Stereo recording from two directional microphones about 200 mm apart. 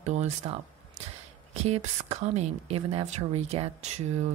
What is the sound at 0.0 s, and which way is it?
Speech, 35° right (ahead or behind).